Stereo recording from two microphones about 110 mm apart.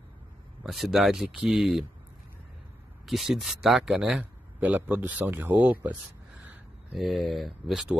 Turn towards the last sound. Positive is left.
turn(degrees=-5)  # may be behind; listen again after turning